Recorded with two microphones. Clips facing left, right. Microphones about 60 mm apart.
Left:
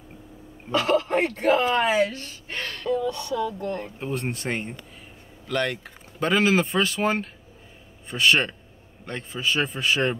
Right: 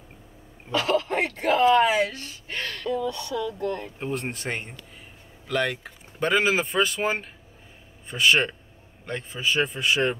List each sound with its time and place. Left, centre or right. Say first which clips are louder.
0.7 s speech: left 2 dB; left
4.0 s speech: left 1 dB; centre